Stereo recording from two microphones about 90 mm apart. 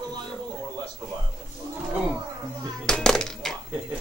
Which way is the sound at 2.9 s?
10° left (ahead or behind).